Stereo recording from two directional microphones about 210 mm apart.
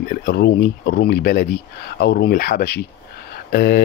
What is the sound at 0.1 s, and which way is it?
Speech, 50° left (ahead or behind).